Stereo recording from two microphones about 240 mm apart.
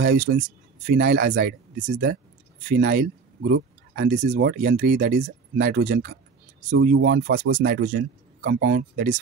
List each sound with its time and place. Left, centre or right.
0.0 s speech: right